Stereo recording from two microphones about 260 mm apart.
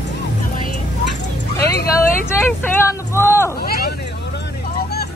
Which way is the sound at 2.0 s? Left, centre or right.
Centre.